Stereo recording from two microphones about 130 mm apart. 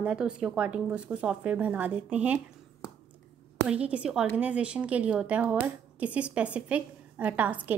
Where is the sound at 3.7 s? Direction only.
10° right (ahead or behind).